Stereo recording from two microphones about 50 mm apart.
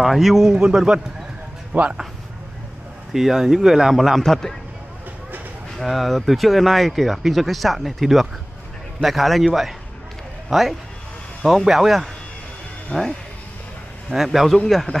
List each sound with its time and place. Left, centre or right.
0.0 s speech: centre
0.6 s speech: centre
3.1 s speech: centre
4.2 s speech: centre
5.8 s speech: centre
12.9 s speech: centre
14.1 s speech: centre